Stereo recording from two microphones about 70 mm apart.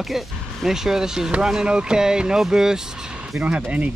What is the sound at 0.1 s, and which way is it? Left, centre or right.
Speech, centre.